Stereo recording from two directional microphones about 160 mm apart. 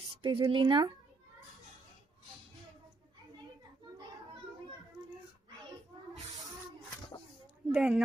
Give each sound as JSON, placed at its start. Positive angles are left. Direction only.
{"t": 0.2, "sound": "speech", "side_deg": -35}
{"t": 7.7, "sound": "a woman's voice", "side_deg": -5}